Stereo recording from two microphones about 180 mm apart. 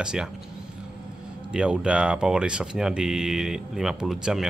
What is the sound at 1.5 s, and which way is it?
Speech, 5° right (ahead or behind).